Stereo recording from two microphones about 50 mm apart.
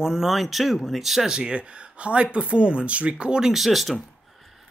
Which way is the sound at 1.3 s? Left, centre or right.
Centre.